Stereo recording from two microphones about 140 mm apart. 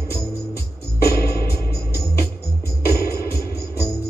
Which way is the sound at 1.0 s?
20° left (ahead or behind).